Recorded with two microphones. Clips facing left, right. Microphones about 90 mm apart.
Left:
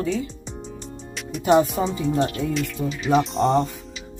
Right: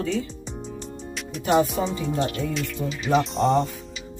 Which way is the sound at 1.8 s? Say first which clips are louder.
Left 3 dB; 10° left (ahead or behind).